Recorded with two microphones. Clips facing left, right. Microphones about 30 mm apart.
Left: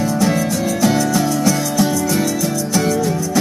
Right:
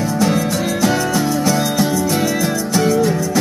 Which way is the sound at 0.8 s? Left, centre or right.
Right.